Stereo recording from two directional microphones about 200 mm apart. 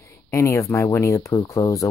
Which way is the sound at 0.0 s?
15° left (ahead or behind).